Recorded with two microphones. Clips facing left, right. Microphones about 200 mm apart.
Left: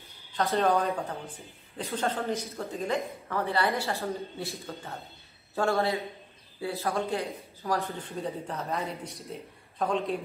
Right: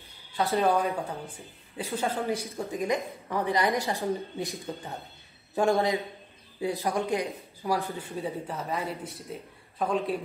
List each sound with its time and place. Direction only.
0.3 s speech: 15° right (ahead or behind)